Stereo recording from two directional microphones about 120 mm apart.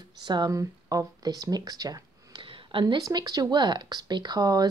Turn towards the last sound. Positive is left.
turn(degrees=-35)  # may be behind; listen again after turning